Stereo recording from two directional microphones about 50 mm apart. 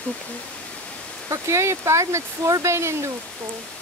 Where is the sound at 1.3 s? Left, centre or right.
Right.